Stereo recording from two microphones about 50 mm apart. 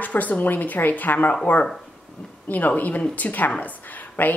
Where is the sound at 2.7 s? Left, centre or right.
Left.